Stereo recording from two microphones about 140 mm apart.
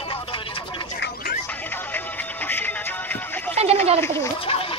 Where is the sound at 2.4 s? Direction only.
15° left (ahead or behind).